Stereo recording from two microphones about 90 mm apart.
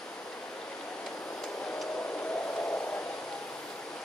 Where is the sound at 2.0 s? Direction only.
15° left (ahead or behind).